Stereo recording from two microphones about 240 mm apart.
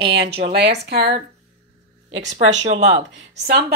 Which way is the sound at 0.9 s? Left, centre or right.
Right.